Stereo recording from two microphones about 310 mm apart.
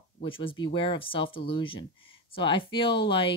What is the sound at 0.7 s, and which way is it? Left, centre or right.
Speech, centre.